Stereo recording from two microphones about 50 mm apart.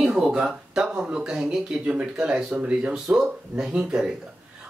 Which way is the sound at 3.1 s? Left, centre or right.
Centre.